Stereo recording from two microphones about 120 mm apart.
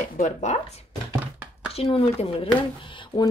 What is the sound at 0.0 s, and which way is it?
Speech, 85° left.